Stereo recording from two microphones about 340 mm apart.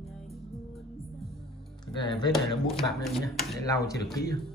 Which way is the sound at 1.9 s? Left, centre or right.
Centre.